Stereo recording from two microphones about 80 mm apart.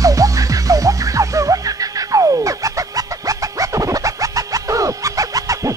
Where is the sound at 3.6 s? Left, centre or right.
Right.